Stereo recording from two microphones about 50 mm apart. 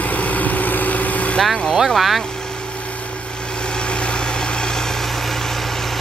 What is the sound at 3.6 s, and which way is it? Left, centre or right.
Vehicle, centre.